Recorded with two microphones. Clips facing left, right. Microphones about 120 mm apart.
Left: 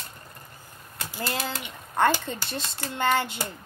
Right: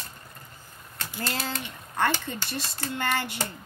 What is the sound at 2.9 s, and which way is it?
Hands, 20° left (ahead or behind).